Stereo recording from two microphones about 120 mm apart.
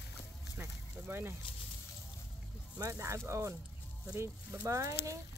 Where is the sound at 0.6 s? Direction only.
20° right (ahead or behind).